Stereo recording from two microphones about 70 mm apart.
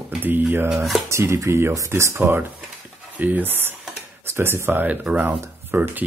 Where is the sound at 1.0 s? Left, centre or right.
Right.